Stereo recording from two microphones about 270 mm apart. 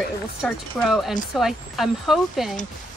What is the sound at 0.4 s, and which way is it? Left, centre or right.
Speech, centre.